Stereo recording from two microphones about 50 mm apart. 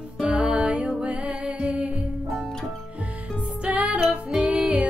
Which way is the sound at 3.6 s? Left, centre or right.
Right.